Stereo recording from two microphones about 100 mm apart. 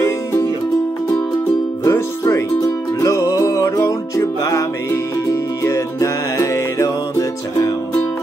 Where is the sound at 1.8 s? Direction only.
30° left (ahead or behind).